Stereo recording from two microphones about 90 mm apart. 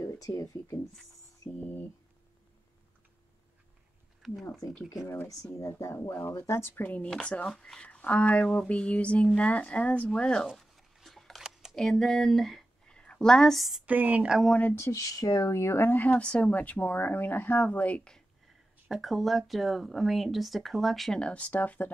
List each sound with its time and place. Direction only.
0.0 s speech: 45° left (ahead or behind)
4.2 s speech: centre (ahead or behind)
5.4 s speech: 35° left (ahead or behind); by 10.5 s 10° left (ahead or behind)
10.5 s a sound: centre (ahead or behind)
11.7 s speech: 5° left (ahead or behind)
13.8 s speech: 20° right (ahead or behind)
14.6 s speech: 25° left (ahead or behind); by 18.2 s 10° left (ahead or behind)
18.9 s speech: centre (ahead or behind)
21.2 s speech: 15° left (ahead or behind)